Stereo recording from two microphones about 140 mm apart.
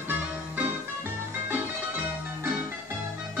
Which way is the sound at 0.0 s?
10° right (ahead or behind).